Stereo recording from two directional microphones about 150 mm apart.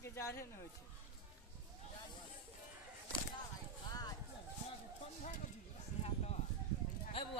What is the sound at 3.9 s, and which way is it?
Clip-clop, 25° left (ahead or behind).